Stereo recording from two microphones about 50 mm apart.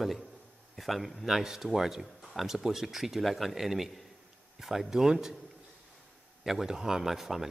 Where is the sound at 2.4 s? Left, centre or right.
Centre.